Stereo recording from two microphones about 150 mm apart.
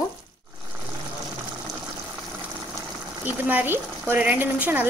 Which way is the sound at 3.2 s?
10° right (ahead or behind).